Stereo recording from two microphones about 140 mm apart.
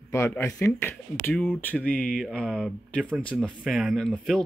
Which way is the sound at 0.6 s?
15° left (ahead or behind).